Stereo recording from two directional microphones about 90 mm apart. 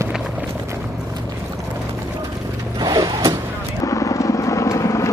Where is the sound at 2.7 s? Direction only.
50° right (ahead or behind).